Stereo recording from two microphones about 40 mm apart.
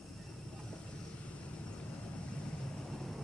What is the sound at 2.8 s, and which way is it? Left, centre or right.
Vehicle, centre.